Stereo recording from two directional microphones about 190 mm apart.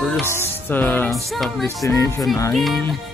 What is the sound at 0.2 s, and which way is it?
Music, 10° left (ahead or behind).